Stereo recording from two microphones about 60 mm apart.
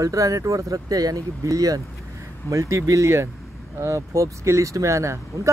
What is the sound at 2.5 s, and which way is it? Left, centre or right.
Speech, right.